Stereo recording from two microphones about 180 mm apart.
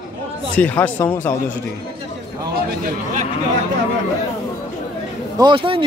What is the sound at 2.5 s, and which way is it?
Speech, 55° right (ahead or behind).